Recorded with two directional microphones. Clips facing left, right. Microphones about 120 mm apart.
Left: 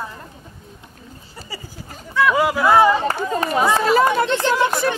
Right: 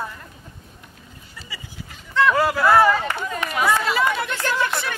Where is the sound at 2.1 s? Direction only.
10° left (ahead or behind).